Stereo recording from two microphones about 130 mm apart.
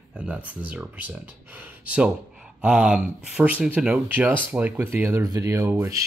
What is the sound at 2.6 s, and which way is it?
Speech, 10° right (ahead or behind).